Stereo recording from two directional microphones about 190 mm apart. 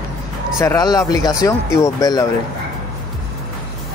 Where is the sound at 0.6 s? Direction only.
15° left (ahead or behind).